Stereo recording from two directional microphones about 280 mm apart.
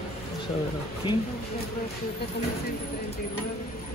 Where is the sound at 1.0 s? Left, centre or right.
Centre.